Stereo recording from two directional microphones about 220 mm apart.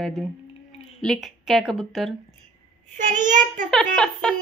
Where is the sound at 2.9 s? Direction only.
35° right (ahead or behind).